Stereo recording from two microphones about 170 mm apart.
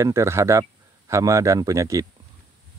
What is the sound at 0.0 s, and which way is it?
Speech, 15° right (ahead or behind).